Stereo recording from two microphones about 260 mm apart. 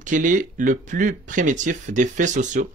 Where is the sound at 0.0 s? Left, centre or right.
Right.